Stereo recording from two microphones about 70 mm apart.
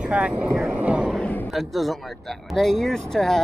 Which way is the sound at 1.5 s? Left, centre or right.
Centre.